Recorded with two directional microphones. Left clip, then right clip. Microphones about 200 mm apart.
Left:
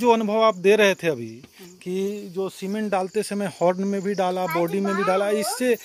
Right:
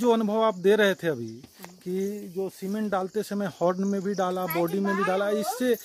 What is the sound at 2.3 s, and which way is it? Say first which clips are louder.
Speech: left 4 dB; 5° left (ahead or behind).